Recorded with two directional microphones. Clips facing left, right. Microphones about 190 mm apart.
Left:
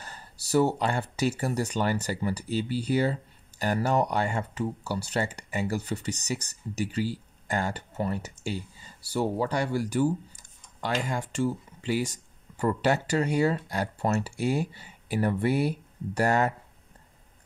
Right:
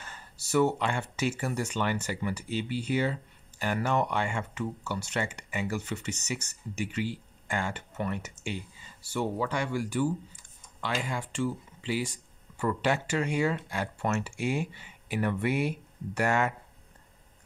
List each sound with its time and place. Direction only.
0.0 s speech: 35° left (ahead or behind)